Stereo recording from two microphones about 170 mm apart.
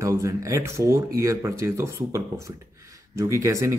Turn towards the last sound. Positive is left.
turn(degrees=-15)  # may be behind; listen again after turning